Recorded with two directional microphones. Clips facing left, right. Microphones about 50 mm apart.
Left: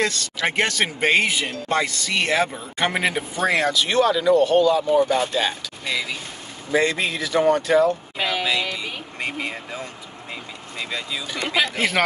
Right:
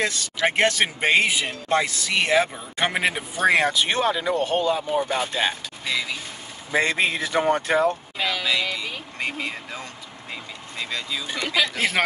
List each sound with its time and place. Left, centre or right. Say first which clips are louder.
0.0 s speech: even; centre
1.9 s speech: even; centre
3.3 s speech: right 2 dB; right
4.8 s speech: left 5 dB; centre
5.9 s speech: left 1 dB; centre
6.7 s speech: left 1 dB; right
8.2 s music: left 1 dB; left
8.5 s music: left 1 dB; centre
10.8 s speech: left 1 dB; centre
11.4 s speech: left 2 dB; left